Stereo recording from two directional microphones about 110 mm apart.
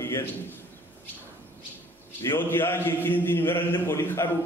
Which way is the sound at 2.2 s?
20° left (ahead or behind).